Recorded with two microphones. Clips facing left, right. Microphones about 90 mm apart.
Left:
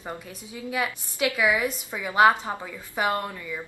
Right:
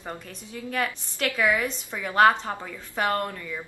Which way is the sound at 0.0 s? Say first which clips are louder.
Left 1 dB; 10° left (ahead or behind).